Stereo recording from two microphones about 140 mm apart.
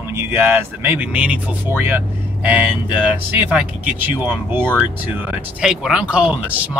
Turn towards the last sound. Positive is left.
turn(degrees=-10)  # may be behind; listen again after turning